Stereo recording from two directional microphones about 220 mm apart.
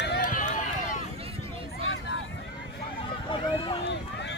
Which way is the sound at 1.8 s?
60° left (ahead or behind).